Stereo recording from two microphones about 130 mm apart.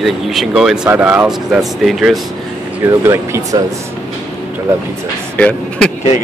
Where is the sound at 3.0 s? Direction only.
20° right (ahead or behind).